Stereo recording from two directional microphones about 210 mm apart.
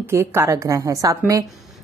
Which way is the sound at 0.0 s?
10° right (ahead or behind).